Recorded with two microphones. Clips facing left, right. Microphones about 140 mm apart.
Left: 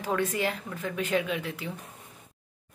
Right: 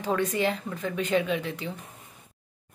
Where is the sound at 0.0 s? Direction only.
5° left (ahead or behind).